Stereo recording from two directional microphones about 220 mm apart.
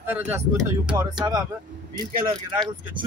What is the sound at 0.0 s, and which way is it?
Speech, 10° right (ahead or behind).